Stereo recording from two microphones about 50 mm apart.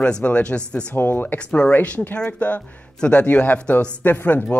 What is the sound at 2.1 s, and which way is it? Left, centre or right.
Speech, left.